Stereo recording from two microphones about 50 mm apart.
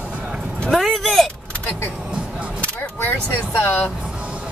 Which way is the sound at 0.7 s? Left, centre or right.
Centre.